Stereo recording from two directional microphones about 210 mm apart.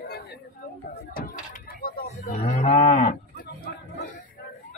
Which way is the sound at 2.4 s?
30° left (ahead or behind).